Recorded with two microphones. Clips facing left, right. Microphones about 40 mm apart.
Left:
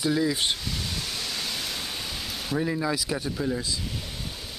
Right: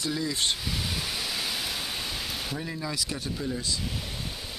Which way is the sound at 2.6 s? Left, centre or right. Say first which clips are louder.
Left 6 dB; centre.